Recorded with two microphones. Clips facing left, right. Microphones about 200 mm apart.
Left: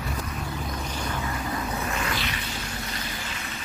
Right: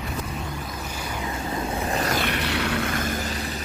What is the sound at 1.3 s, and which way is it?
Vehicle, 25° right (ahead or behind).